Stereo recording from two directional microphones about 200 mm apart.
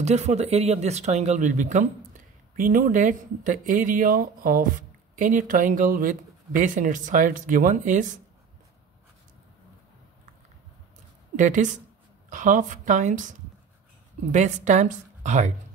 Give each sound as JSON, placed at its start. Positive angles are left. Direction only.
{"t": 0.0, "sound": "speech", "side_deg": -35}
{"t": 11.3, "sound": "speech", "side_deg": -40}